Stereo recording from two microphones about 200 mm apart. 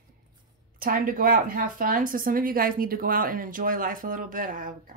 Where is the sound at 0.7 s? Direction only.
45° right (ahead or behind).